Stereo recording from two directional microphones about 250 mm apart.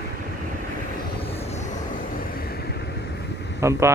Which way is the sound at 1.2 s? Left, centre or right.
Left.